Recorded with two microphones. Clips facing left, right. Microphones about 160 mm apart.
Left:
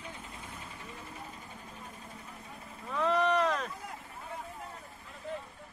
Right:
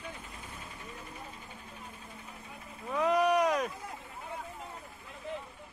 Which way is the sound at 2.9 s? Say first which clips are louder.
Right 2 dB; 10° right (ahead or behind).